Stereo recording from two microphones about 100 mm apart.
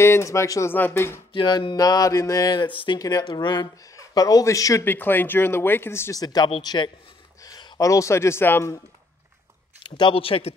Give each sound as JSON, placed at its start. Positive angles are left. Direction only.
{"t": 0.0, "sound": "speech", "side_deg": 25}
{"t": 1.3, "sound": "speech", "side_deg": 55}
{"t": 3.0, "sound": "speech", "side_deg": 40}
{"t": 4.8, "sound": "speech", "side_deg": 20}
{"t": 6.1, "sound": "speech", "side_deg": 40}
{"t": 7.4, "sound": "a sound", "side_deg": 45}
{"t": 7.9, "sound": "speech", "side_deg": 30}
{"t": 9.8, "sound": "speech", "side_deg": 55}